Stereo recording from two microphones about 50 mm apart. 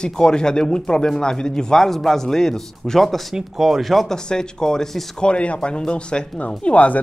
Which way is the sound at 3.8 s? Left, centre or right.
Centre.